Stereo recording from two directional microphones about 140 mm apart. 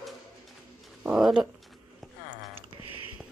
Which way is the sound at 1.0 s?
5° right (ahead or behind).